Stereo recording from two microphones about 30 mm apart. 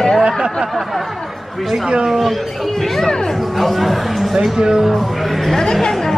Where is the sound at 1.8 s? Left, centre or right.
Right.